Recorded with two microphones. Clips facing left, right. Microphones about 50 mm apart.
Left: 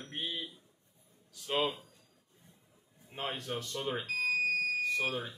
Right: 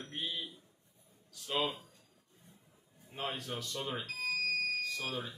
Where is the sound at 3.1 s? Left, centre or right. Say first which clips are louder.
Left 2 dB; left.